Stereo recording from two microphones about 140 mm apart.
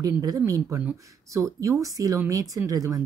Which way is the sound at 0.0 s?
25° right (ahead or behind).